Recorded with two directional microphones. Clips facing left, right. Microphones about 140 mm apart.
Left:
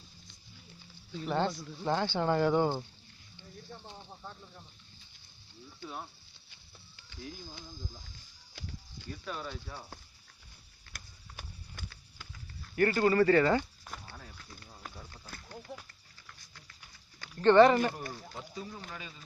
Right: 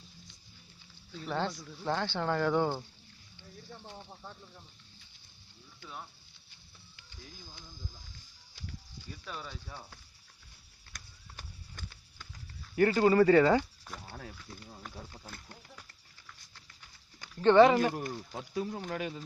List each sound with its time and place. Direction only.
1.1 s speech: 5° left (ahead or behind)
5.8 s speech: 30° left (ahead or behind)
9.2 s speech: centre (ahead or behind)
10.9 s a sound: 5° left (ahead or behind)
12.7 s speech: 10° right (ahead or behind)
17.4 s speech: 5° right (ahead or behind)
18.3 s speech: 75° right (ahead or behind)